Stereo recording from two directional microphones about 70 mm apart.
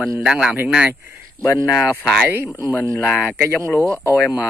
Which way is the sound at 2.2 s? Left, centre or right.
Right.